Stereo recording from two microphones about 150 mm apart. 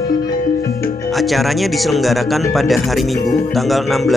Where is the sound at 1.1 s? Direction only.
Centre (ahead or behind).